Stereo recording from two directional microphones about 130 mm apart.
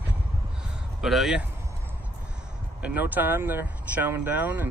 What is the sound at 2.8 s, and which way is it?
Speech, 15° right (ahead or behind).